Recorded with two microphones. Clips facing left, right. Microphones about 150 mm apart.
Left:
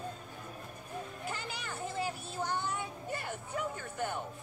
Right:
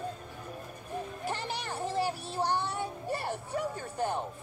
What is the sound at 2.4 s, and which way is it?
Child singing, 75° right (ahead or behind).